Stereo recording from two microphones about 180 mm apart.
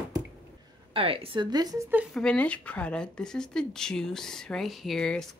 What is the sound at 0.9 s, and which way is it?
Speech, 30° right (ahead or behind).